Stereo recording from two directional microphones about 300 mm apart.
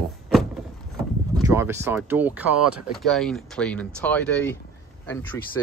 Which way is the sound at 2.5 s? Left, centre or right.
Right.